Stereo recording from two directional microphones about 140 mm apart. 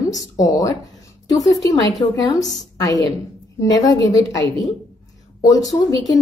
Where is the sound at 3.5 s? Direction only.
25° left (ahead or behind).